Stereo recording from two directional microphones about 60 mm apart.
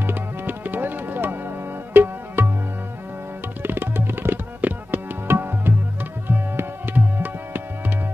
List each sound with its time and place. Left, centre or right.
0.0 s music: right
3.6 s music: right
5.3 s tabla: right